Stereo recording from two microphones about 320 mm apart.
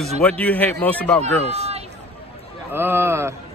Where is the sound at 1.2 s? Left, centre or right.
Centre.